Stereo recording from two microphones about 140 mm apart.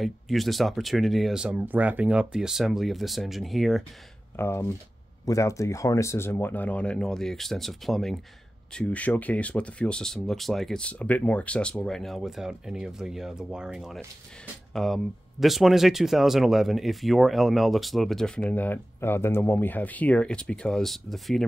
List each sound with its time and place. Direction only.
0.0 s speech: centre (ahead or behind)
4.4 s speech: 15° left (ahead or behind); by 21.5 s centre (ahead or behind)